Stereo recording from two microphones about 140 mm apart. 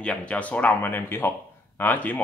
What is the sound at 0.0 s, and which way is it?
A man's voice, 10° left (ahead or behind).